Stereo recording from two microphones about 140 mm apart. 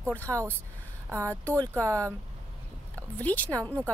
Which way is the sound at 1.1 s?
20° right (ahead or behind).